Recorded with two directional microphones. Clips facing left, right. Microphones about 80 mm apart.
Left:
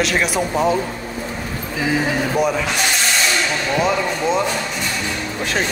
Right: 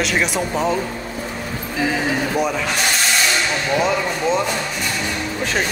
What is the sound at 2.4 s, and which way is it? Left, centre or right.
Speech, centre.